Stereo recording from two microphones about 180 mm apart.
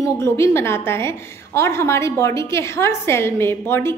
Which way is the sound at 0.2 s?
15° left (ahead or behind).